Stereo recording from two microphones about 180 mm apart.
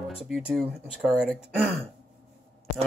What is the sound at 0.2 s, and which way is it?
Speech, centre (ahead or behind).